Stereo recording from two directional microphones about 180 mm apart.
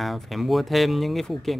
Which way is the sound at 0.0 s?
Centre (ahead or behind).